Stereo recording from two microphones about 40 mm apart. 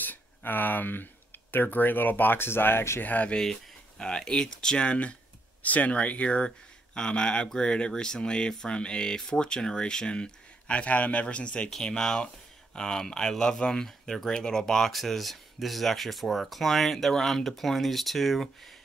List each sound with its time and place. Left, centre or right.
0.0 s a sound: left
1.5 s speech: left
2.4 s speech: left
3.1 s speech: left
4.0 s speech: centre
10.9 s speech: left; by 18.5 s centre